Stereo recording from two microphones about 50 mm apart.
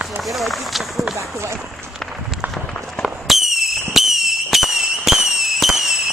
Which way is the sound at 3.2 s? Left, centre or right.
Centre.